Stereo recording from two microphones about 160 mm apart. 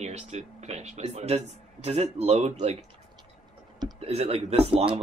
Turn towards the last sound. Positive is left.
turn(degrees=-35)  # may be behind; listen again after turning